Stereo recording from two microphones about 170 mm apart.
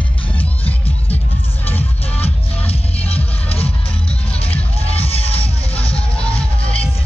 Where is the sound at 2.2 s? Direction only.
35° left (ahead or behind).